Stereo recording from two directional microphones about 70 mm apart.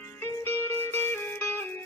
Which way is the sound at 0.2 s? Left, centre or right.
Left.